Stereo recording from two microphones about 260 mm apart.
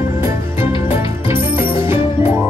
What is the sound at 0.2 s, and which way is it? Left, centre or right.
Music, centre.